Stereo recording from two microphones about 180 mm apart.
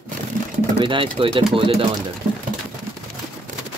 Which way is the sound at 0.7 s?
25° right (ahead or behind).